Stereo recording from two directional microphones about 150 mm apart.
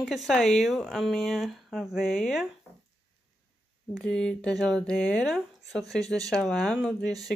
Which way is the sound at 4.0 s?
5° left (ahead or behind).